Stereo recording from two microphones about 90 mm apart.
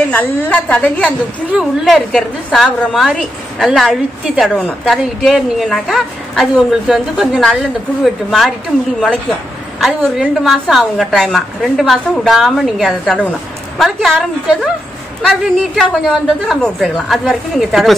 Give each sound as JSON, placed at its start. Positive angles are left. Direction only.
{"t": 0.1, "sound": "a woman's voice", "side_deg": 15}
{"t": 1.5, "sound": "a woman's voice", "side_deg": -10}
{"t": 1.9, "sound": "a woman's voice", "side_deg": 5}
{"t": 9.8, "sound": "a woman's voice", "side_deg": 0}